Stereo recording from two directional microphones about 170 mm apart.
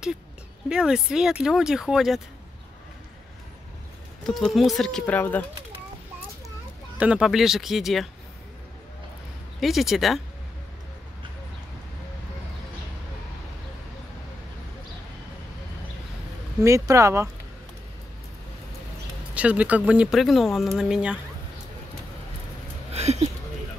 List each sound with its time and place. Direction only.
0.7 s speech: 5° right (ahead or behind)
4.3 s speech: centre (ahead or behind)
7.0 s speech: 5° right (ahead or behind)
9.6 s speech: centre (ahead or behind)
16.6 s speech: 15° right (ahead or behind)
19.3 s speech: 10° right (ahead or behind)
22.9 s a sound: 40° right (ahead or behind)